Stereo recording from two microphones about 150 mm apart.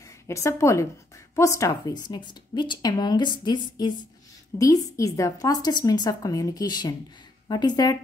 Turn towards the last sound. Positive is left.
turn(degrees=30)  # may be behind; listen again after turning